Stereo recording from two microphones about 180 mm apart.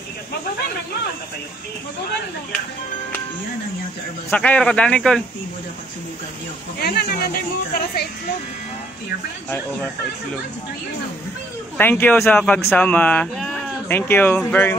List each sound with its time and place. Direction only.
4.3 s speech: 5° left (ahead or behind)
6.8 s speech: 60° left (ahead or behind)
11.7 s speech: 10° left (ahead or behind)